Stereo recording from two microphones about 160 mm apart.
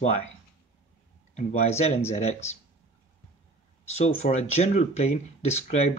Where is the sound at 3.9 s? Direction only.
45° left (ahead or behind).